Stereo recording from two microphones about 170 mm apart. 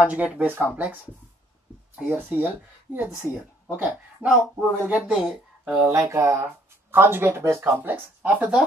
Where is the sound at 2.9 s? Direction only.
10° right (ahead or behind).